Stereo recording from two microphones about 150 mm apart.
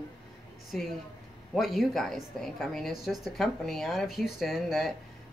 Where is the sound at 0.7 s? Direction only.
Centre (ahead or behind).